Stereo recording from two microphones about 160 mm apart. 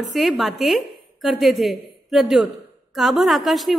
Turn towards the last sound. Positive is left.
turn(degrees=0)  # may be behind; listen again after turning